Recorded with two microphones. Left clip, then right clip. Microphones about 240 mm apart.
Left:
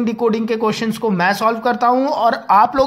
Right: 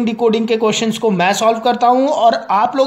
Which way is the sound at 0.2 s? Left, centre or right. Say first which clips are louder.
Right 4 dB; centre.